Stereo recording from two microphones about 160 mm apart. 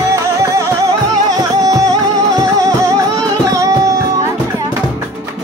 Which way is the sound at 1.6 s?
20° right (ahead or behind).